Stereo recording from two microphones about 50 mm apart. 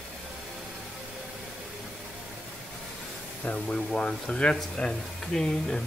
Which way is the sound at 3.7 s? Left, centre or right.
Centre.